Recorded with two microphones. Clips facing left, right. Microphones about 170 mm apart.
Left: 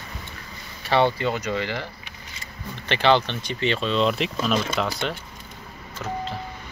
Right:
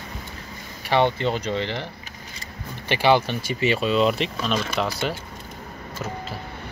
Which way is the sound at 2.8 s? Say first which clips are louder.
Right 1 dB; 10° right (ahead or behind).